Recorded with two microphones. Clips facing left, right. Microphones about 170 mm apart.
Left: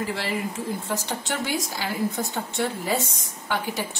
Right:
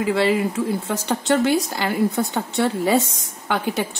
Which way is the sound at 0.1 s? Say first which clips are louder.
Right 9 dB; 75° right (ahead or behind).